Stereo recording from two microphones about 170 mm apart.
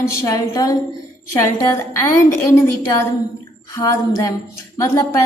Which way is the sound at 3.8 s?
20° left (ahead or behind).